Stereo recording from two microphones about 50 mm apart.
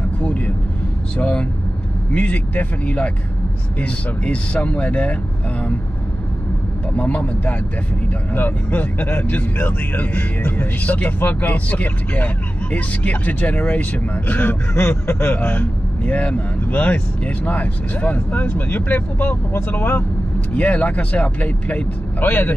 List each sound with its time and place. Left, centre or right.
1.1 s speech: left
7.0 s speech: left
14.7 s speech: left
16.1 s speech: left
20.5 s speech: left